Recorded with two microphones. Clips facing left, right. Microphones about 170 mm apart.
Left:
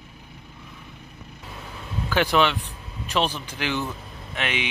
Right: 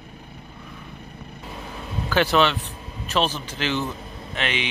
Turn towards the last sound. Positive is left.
turn(degrees=10)  # may be behind; listen again after turning